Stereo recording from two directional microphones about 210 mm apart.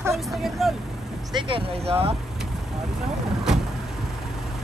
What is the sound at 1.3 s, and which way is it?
Speech, 25° right (ahead or behind).